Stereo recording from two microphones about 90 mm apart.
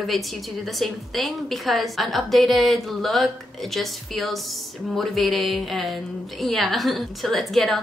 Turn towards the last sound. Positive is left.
turn(degrees=0)  # may be behind; listen again after turning